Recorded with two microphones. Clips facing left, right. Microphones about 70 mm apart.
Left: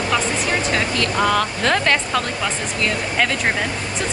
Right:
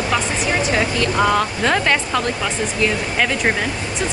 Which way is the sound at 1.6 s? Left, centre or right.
Centre.